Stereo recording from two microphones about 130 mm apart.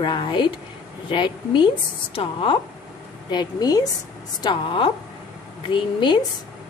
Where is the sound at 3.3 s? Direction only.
30° left (ahead or behind).